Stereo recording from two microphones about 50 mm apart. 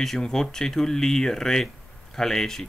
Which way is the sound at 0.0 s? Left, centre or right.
Centre.